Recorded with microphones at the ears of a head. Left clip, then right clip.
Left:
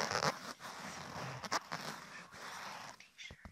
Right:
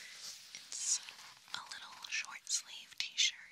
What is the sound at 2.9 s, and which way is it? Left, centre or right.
Whispering, right.